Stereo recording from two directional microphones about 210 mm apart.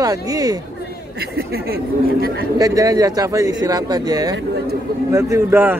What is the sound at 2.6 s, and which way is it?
A woman's voice, 15° right (ahead or behind).